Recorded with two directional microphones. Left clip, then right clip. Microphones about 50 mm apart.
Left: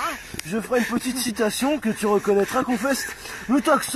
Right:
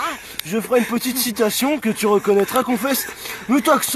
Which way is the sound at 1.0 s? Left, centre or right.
Right.